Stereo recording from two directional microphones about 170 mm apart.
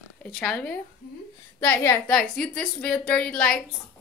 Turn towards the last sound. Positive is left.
turn(degrees=5)  # may be behind; listen again after turning